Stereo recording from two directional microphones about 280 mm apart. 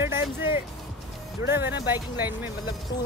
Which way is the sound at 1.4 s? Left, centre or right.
Centre.